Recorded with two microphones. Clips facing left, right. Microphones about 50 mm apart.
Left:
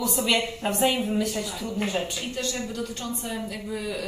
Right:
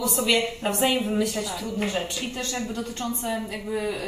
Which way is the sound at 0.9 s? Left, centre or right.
Centre.